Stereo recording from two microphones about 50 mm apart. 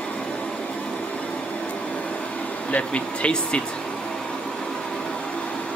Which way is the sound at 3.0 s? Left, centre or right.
Centre.